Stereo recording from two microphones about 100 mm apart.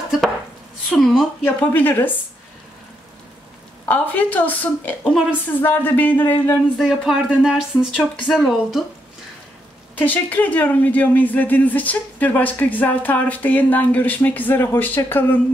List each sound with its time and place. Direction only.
0.9 s speech: 5° left (ahead or behind)
1.4 s a woman's voice: 20° left (ahead or behind)
3.8 s a woman's voice: 20° left (ahead or behind)
5.0 s speech: centre (ahead or behind)
5.6 s a woman's voice: 20° left (ahead or behind)
6.8 s speech: 5° right (ahead or behind)
9.9 s speech: 20° left (ahead or behind)